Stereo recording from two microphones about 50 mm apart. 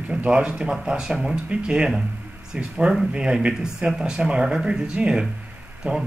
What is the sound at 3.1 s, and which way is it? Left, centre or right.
Speech, centre.